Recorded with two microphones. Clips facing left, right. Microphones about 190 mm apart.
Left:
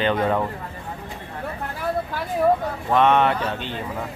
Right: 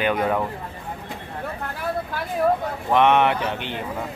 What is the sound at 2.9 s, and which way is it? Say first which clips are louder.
Speech: even; 15° right (ahead or behind).